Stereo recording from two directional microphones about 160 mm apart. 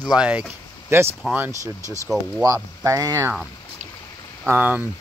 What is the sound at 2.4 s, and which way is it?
Speech, 20° right (ahead or behind).